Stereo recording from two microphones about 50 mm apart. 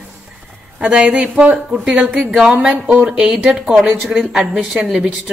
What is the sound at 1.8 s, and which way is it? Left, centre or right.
Speech, centre.